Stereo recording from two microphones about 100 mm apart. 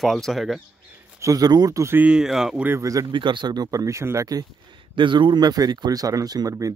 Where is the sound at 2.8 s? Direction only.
35° right (ahead or behind).